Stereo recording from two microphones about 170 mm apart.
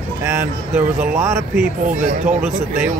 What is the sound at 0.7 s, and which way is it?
A man's voice, 15° right (ahead or behind).